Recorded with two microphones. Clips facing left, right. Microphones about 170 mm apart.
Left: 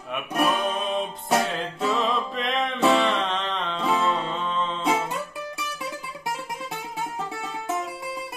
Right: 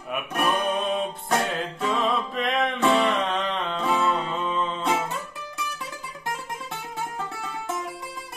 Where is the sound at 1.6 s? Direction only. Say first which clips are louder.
Even; centre (ahead or behind).